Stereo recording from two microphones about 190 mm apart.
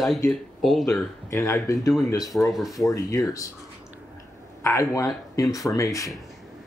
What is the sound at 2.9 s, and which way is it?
Speech, 15° left (ahead or behind).